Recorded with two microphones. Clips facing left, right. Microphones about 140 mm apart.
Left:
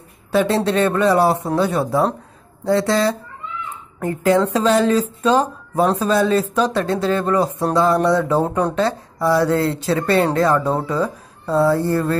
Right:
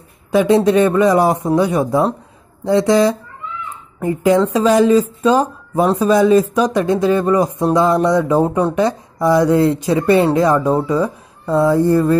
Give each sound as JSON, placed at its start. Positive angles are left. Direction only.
{"t": 0.3, "sound": "speech", "side_deg": -15}
{"t": 8.8, "sound": "speech", "side_deg": -15}